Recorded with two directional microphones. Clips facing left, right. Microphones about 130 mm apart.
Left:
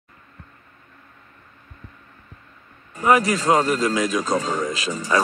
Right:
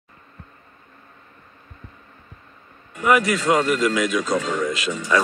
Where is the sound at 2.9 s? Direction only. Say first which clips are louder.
Left 1 dB; 40° left (ahead or behind).